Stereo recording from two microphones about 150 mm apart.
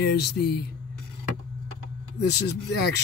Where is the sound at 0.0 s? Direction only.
90° left.